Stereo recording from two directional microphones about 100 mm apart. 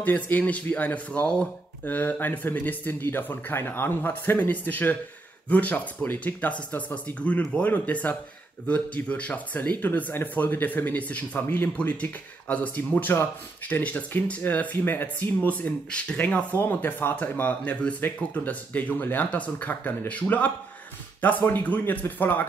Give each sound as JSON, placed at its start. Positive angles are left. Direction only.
{"t": 0.0, "sound": "speech", "side_deg": 15}